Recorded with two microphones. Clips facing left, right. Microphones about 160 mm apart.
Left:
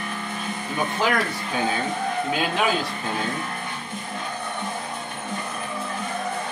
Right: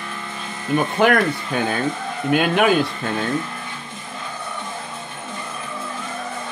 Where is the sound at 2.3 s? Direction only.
60° right (ahead or behind).